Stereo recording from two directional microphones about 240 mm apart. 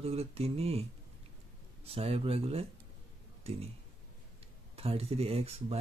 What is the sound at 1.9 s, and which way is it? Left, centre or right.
Speech, right.